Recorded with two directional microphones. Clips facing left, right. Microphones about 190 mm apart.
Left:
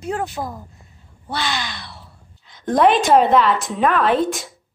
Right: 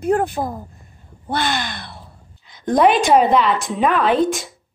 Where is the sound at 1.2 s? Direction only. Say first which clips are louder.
Right 3 dB; 55° right (ahead or behind).